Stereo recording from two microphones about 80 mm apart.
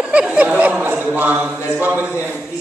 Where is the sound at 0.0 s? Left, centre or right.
Centre.